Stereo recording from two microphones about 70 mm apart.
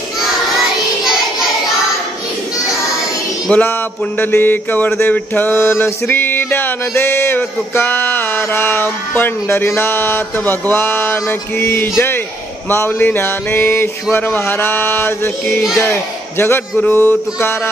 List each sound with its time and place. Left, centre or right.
3.5 s a sound: centre
4.2 s mantra: left
5.0 s music: left
16.8 s mantra: left